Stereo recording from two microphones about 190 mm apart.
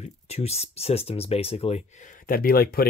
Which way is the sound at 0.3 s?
35° left (ahead or behind).